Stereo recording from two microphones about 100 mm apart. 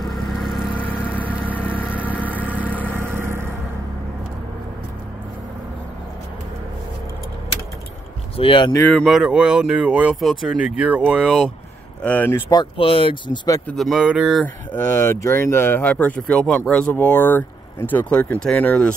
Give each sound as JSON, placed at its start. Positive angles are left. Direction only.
{"t": 0.0, "sound": "vehicle", "side_deg": 0}
{"t": 0.7, "sound": "vehicle", "side_deg": 15}
{"t": 2.9, "sound": "vehicle", "side_deg": -25}
{"t": 8.4, "sound": "speech", "side_deg": 55}
{"t": 9.0, "sound": "speech", "side_deg": -5}
{"t": 12.0, "sound": "speech", "side_deg": 15}
{"t": 12.7, "sound": "speech", "side_deg": 65}
{"t": 13.7, "sound": "speech", "side_deg": 0}
{"t": 14.4, "sound": "speech", "side_deg": 20}